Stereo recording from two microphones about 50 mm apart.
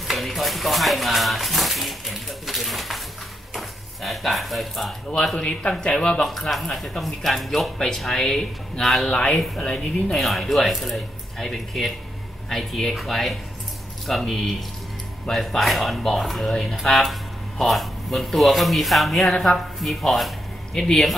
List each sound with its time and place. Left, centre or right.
0.0 s speech: centre
5.1 s speech: centre
5.4 s speech: left
6.2 s speech: centre
9.0 s speech: left
10.1 s speech: centre